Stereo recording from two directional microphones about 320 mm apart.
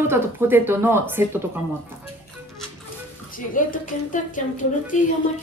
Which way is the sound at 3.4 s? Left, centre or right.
Left.